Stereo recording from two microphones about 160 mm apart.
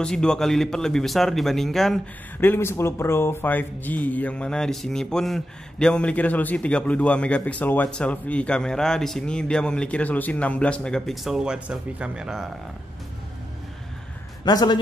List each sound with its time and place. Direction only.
0.0 s speech: 5° left (ahead or behind)
2.4 s speech: 15° left (ahead or behind); by 12.4 s 5° right (ahead or behind)
14.4 s speech: 25° left (ahead or behind)